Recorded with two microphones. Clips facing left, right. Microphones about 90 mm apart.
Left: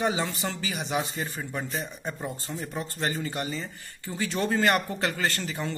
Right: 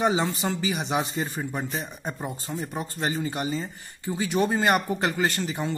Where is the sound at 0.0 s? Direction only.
25° right (ahead or behind).